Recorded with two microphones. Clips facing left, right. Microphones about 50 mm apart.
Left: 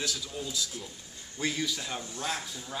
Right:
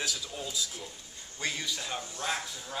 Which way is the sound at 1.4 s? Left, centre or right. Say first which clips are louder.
Left 3 dB; centre.